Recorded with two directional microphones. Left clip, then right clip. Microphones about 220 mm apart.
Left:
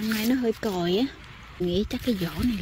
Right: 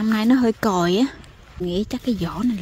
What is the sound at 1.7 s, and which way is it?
Speech, 20° right (ahead or behind).